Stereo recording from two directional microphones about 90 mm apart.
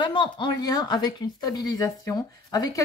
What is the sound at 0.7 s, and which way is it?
Speech, 45° left (ahead or behind).